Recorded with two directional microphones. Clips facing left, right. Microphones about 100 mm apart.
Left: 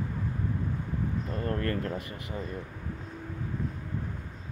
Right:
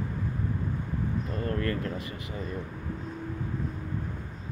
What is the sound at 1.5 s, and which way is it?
Speech, 40° left (ahead or behind).